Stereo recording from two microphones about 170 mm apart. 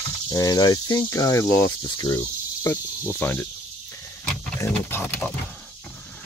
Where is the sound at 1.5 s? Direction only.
15° left (ahead or behind).